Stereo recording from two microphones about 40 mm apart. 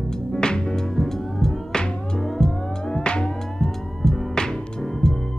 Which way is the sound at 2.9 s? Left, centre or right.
Left.